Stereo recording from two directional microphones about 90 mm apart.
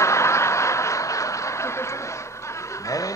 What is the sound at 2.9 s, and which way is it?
Fowl, 40° left (ahead or behind).